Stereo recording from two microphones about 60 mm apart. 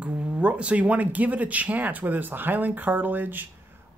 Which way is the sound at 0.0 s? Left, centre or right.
Centre.